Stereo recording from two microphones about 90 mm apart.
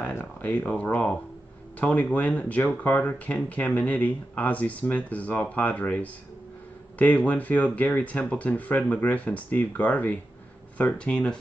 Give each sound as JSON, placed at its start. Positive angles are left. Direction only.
{"t": 0.1, "sound": "speech", "side_deg": 20}